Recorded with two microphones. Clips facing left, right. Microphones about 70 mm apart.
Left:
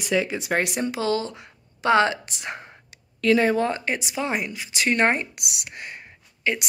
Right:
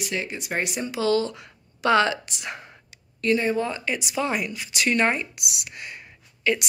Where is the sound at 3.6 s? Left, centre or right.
Left.